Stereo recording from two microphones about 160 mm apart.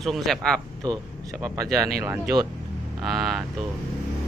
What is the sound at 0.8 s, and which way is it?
Speech, 20° right (ahead or behind).